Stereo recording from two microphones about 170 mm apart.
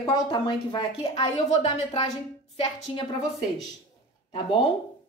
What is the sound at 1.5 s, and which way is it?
Speech, 40° left (ahead or behind).